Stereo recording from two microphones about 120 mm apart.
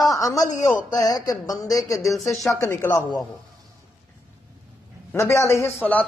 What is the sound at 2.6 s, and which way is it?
Speech, 20° left (ahead or behind).